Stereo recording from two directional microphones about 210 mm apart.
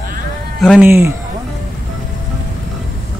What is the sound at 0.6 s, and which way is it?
Speech, centre (ahead or behind).